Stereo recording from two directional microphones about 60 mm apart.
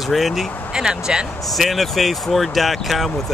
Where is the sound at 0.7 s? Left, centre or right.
Centre.